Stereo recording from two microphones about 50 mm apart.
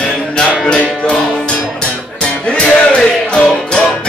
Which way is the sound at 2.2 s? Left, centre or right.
Left.